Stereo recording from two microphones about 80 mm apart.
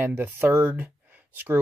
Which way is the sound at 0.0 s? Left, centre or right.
Right.